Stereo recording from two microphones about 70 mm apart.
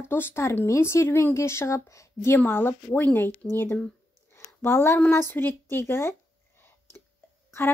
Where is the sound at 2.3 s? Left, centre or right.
Left.